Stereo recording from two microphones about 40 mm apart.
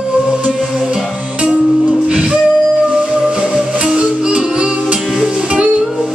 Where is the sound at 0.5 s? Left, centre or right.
Centre.